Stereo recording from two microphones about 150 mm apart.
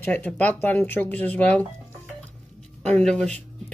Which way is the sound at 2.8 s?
5° left (ahead or behind).